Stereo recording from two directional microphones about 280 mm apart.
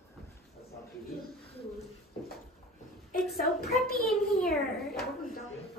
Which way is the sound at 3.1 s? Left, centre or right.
Left.